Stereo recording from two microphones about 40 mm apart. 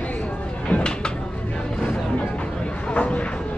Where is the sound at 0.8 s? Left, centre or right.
Left.